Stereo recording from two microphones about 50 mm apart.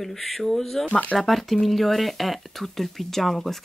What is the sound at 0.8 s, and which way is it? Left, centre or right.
Speech, left.